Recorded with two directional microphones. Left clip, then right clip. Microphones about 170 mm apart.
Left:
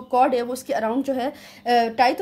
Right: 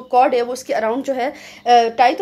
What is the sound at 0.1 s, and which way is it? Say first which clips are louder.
A woman's voice: right 5 dB; 25° left (ahead or behind).